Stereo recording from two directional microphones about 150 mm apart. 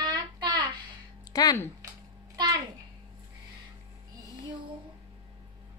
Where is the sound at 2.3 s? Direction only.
25° right (ahead or behind).